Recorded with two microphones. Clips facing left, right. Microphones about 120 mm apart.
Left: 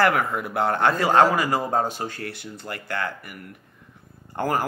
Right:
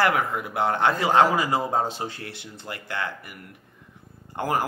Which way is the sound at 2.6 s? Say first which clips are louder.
Left 2 dB; 45° left (ahead or behind).